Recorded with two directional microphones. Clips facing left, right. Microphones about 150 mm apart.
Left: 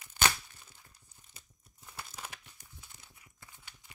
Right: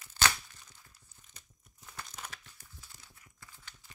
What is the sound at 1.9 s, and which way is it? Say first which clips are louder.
Crumpling: even; 10° left (ahead or behind).